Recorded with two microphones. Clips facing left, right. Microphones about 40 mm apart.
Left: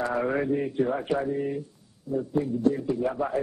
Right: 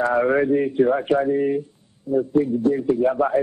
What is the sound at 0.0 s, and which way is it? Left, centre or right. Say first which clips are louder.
Speech: right 8 dB; centre.